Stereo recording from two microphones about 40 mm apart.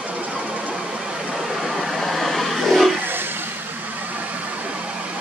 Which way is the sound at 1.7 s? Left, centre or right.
Centre.